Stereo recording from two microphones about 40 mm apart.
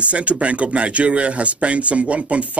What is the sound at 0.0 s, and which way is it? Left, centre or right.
Speech, right.